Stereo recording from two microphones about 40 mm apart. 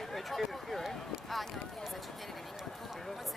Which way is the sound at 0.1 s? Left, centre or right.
Centre.